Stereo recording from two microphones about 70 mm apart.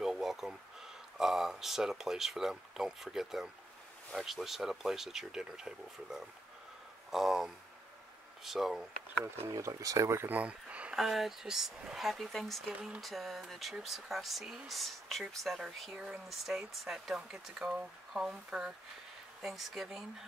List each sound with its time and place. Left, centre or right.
0.0 s a sound: centre
1.1 s speech: centre
9.7 s speech: right
10.3 s a sound: centre
11.0 s speech: centre
19.4 s speech: centre